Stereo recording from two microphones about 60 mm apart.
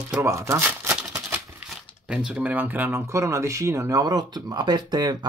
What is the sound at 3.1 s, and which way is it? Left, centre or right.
Speech, right.